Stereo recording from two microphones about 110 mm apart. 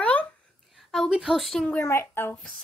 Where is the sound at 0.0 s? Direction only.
10° left (ahead or behind).